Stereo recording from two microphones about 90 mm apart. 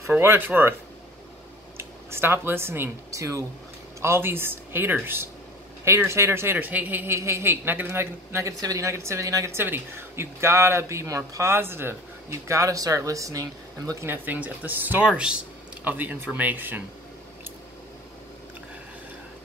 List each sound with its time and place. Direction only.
0.2 s speech: 25° right (ahead or behind)
1.8 s a man's voice: 25° right (ahead or behind)
14.0 s speech: 20° right (ahead or behind)